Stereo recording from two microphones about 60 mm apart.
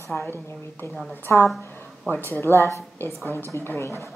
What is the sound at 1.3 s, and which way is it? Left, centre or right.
A woman's voice, left.